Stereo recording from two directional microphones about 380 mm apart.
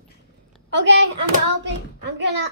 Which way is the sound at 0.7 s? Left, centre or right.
Right.